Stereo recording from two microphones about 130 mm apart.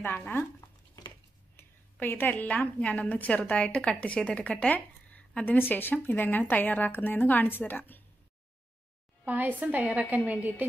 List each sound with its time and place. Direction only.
0.2 s a woman's voice: 15° left (ahead or behind)
9.2 s a woman's voice: 15° right (ahead or behind)